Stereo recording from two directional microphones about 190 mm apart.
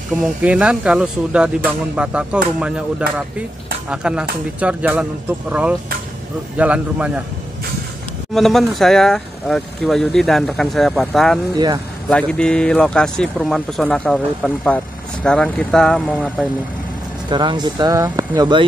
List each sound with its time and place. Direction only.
0.2 s speech: 5° right (ahead or behind)
3.9 s a man's voice: 5° right (ahead or behind)
8.4 s speech: centre (ahead or behind)
11.5 s speech: 20° right (ahead or behind)
12.1 s speech: 5° left (ahead or behind)
17.3 s speech: 25° right (ahead or behind)